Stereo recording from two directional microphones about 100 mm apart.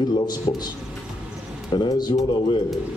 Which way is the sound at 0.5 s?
50° left (ahead or behind).